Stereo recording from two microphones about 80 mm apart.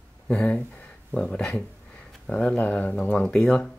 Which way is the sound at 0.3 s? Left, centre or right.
Centre.